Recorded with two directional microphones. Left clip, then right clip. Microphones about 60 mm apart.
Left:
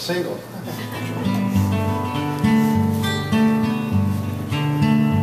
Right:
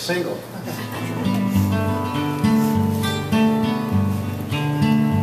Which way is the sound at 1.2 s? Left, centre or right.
Centre.